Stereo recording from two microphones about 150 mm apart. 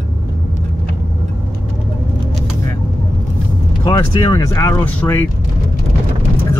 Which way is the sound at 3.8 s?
30° left (ahead or behind).